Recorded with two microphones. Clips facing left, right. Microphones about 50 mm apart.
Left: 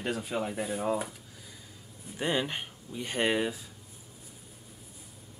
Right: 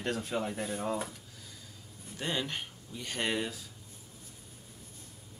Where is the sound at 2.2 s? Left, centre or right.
Centre.